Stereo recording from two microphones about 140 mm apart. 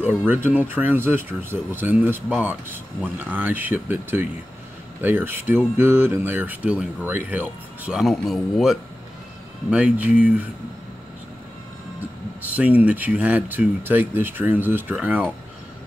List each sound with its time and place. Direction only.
0.3 s speech: 15° right (ahead or behind)
12.0 s speech: 10° right (ahead or behind)